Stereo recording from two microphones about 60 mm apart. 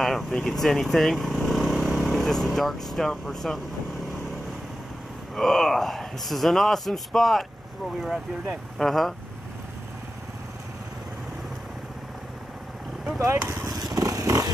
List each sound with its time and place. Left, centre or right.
0.0 s speech: centre
5.3 s speech: centre
8.7 s speech: centre
13.7 s vehicle: centre
13.9 s vehicle: right
14.2 s vehicle: right